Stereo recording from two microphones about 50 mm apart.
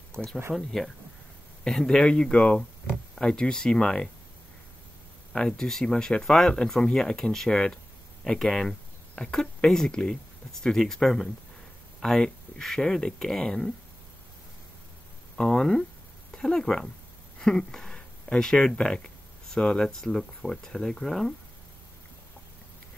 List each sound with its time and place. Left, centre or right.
0.6 s speech: centre
5.3 s speech: centre
15.3 s speech: centre